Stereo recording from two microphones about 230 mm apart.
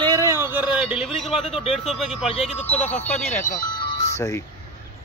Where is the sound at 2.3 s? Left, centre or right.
Left.